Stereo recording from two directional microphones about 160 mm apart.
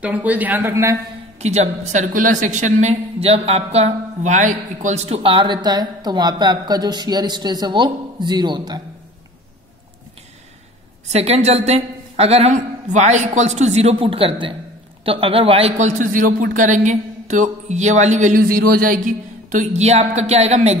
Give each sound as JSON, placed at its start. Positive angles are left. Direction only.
{"t": 0.0, "sound": "speech", "side_deg": -10}
{"t": 1.4, "sound": "a woman's voice", "side_deg": -45}
{"t": 11.1, "sound": "a woman's voice", "side_deg": -40}